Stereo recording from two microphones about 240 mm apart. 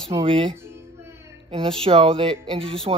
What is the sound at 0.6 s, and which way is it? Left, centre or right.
Music, centre.